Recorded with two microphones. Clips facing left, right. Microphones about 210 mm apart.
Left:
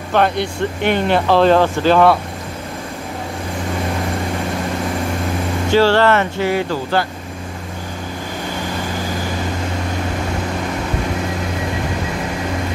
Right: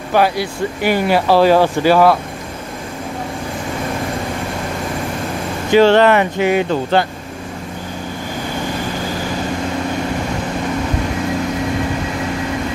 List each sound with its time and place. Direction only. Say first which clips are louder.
0.1 s speech: right 1 dB; 5° right (ahead or behind)
5.7 s speech: right 3 dB; 20° right (ahead or behind)